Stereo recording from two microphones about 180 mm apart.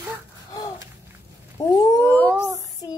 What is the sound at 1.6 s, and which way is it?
Speech, 20° left (ahead or behind).